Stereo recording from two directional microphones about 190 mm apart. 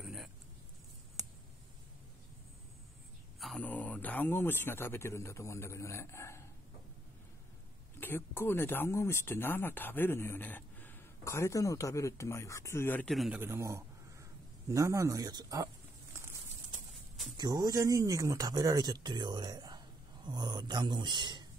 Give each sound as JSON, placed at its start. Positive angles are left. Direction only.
{"t": 0.0, "sound": "a sound", "side_deg": 0}
{"t": 1.2, "sound": "a sound", "side_deg": -20}
{"t": 3.3, "sound": "a man's voice", "side_deg": 0}
{"t": 8.0, "sound": "speech", "side_deg": 10}
{"t": 13.4, "sound": "speech", "side_deg": -15}
{"t": 17.4, "sound": "speech", "side_deg": -20}